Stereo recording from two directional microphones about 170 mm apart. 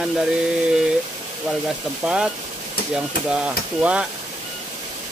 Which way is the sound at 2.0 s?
5° right (ahead or behind).